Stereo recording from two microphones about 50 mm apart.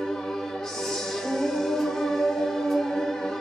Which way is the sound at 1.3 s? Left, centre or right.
Centre.